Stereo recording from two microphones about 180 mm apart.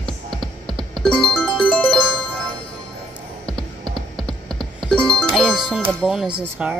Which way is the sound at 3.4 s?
5° left (ahead or behind).